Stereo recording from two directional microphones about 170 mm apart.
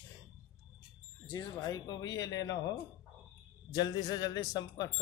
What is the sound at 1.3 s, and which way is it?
Speech, 20° left (ahead or behind).